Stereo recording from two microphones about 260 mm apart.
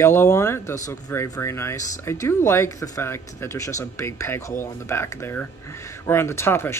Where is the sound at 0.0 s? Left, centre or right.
Centre.